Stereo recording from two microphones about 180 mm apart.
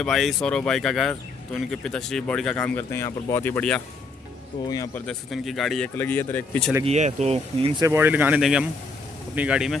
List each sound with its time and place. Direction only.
0.0 s speech: centre (ahead or behind)
4.6 s speech: 20° left (ahead or behind)
5.0 s speech: centre (ahead or behind)
5.9 s speech: 10° left (ahead or behind)
6.8 s speech: 40° right (ahead or behind)
7.8 s speech: 15° right (ahead or behind)